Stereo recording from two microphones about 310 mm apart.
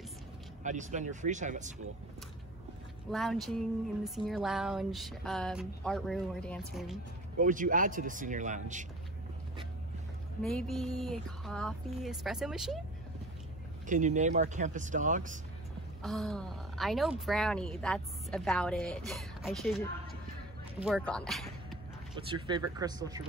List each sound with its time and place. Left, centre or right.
0.7 s speech: right
3.1 s speech: centre
7.3 s speech: right
10.4 s speech: centre
13.8 s speech: right
16.0 s speech: centre
22.1 s speech: centre